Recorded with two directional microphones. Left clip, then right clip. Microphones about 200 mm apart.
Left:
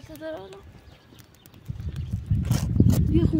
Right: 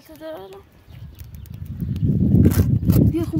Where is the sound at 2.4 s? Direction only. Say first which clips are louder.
Right 2 dB; 15° right (ahead or behind).